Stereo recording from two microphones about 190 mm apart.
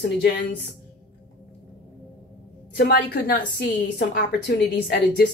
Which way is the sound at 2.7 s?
55° left (ahead or behind).